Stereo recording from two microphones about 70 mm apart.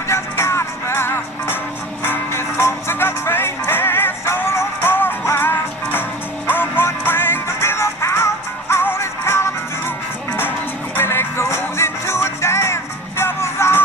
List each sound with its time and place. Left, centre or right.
0.1 s music: left
11.0 s music: left